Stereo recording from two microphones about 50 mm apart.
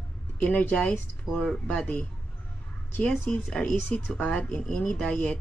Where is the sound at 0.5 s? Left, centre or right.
Left.